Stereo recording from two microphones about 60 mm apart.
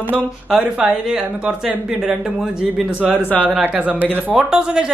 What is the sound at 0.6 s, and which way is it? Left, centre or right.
Speech, centre.